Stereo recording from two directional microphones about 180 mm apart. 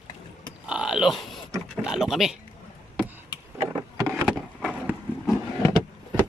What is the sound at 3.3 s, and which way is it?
Vehicle, 25° left (ahead or behind).